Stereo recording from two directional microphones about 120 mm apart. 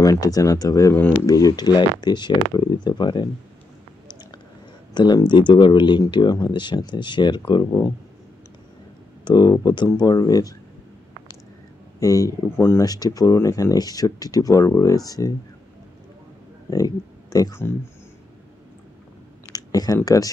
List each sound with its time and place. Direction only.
0.0 s speech: 30° left (ahead or behind)
4.1 s a sound: 35° left (ahead or behind)
4.9 s speech: 35° left (ahead or behind)
9.2 s speech: 35° left (ahead or behind)
12.0 s speech: 30° left (ahead or behind)
16.7 s speech: 30° left (ahead or behind)
19.5 s a sound: 30° left (ahead or behind)